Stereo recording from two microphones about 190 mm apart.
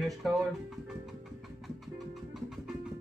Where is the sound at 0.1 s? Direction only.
Centre (ahead or behind).